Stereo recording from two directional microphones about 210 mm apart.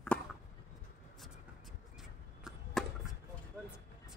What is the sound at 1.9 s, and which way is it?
Chop, centre (ahead or behind).